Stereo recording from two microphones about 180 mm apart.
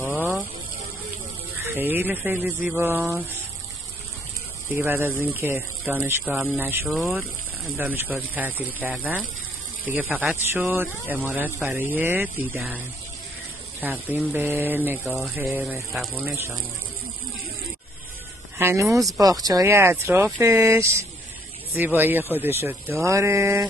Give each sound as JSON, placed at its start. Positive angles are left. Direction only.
{"t": 0.1, "sound": "a sound", "side_deg": -10}
{"t": 1.7, "sound": "speech", "side_deg": -10}
{"t": 4.6, "sound": "speech", "side_deg": -10}
{"t": 18.6, "sound": "speech", "side_deg": -15}
{"t": 18.9, "sound": "speech", "side_deg": 0}
{"t": 19.1, "sound": "speech", "side_deg": -20}